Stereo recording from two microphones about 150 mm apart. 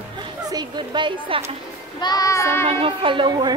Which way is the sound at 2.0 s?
25° left (ahead or behind).